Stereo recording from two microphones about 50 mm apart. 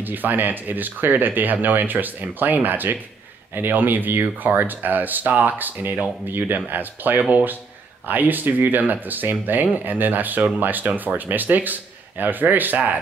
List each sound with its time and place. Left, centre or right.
0.0 s speech: right